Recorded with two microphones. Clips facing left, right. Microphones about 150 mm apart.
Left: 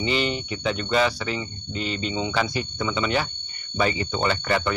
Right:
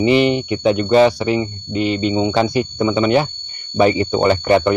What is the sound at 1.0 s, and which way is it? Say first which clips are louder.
Speech: right 10 dB; 25° right (ahead or behind).